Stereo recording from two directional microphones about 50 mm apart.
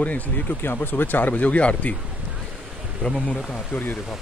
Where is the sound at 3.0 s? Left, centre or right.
Left.